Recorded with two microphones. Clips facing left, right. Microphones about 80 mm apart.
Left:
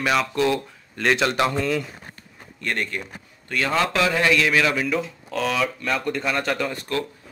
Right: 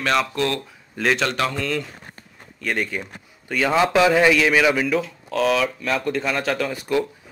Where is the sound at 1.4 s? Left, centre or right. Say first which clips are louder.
Left 2 dB; centre.